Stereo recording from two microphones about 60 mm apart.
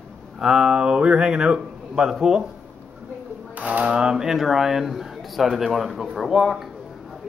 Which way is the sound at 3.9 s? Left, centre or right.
Centre.